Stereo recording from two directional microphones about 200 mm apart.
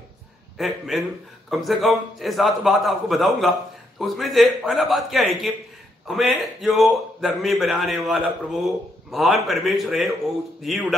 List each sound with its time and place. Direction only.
0.6 s a man's voice: centre (ahead or behind)